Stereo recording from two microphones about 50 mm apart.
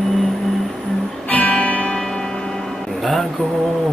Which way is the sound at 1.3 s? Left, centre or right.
Left.